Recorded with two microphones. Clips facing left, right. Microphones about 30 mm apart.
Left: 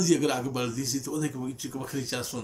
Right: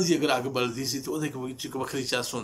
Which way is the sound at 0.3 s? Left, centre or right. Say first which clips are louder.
Right 3 dB; right.